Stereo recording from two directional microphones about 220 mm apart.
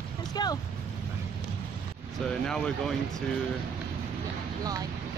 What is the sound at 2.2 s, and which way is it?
Speech, 5° left (ahead or behind).